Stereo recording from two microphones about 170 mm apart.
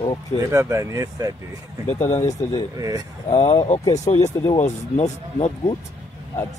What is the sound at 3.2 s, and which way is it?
Speech, 35° left (ahead or behind).